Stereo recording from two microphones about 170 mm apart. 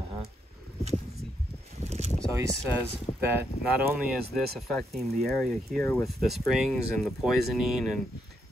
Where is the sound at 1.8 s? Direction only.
40° right (ahead or behind).